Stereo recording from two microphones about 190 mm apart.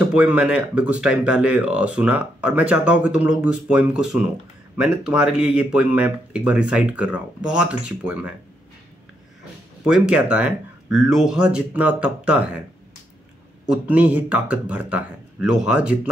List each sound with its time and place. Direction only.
0.1 s speech: 5° right (ahead or behind)
9.8 s speech: 5° right (ahead or behind)
13.7 s speech: 10° right (ahead or behind)